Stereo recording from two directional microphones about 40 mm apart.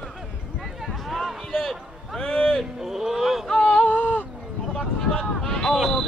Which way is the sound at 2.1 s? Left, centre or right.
Left.